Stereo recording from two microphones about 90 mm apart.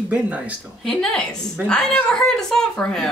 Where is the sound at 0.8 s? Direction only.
5° left (ahead or behind).